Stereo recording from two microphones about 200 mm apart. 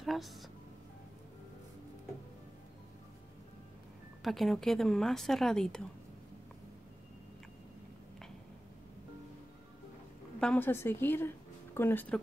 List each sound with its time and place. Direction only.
0.0 s music: centre (ahead or behind)
4.2 s speech: centre (ahead or behind)
10.4 s a woman's voice: 10° left (ahead or behind)